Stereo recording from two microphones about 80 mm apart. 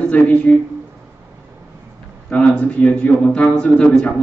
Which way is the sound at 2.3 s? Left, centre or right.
Centre.